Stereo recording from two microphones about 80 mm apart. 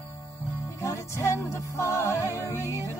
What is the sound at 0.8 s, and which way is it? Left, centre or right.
Music, left.